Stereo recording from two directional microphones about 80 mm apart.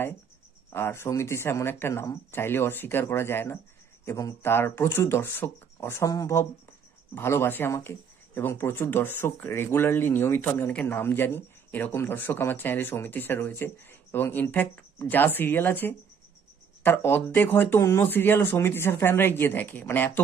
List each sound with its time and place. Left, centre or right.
0.7 s speech: left